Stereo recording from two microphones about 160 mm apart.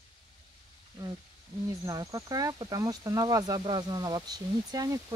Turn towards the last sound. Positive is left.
turn(degrees=-20)  # may be behind; listen again after turning